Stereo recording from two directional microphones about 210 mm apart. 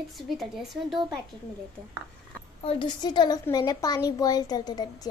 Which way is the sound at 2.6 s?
20° left (ahead or behind).